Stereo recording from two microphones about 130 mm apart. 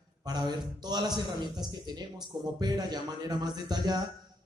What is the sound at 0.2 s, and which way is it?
A man's voice, 30° right (ahead or behind).